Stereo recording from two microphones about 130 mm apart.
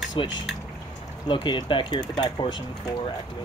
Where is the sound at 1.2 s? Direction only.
35° left (ahead or behind).